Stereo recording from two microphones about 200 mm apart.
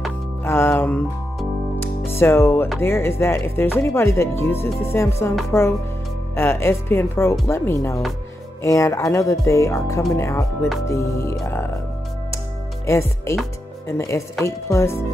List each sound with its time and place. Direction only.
0.4 s music: 10° left (ahead or behind)
2.8 s speech: 10° left (ahead or behind)
12.8 s speech: 15° left (ahead or behind)